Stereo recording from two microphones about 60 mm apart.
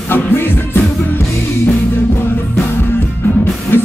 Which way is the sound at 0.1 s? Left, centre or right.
Left.